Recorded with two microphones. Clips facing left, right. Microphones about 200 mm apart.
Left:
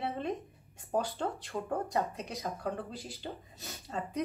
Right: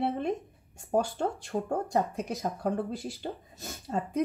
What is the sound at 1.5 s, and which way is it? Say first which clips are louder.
Speech: right 4 dB; 50° right (ahead or behind).